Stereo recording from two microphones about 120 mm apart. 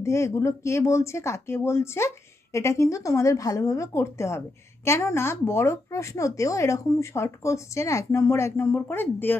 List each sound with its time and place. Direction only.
0.0 s speech: 25° left (ahead or behind)